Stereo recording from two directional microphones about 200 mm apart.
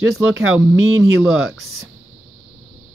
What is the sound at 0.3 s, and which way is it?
Speech, 80° right.